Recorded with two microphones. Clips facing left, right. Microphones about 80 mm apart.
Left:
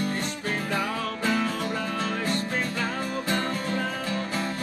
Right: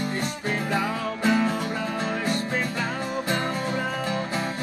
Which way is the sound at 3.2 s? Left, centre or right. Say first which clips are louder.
Right 1 dB; centre.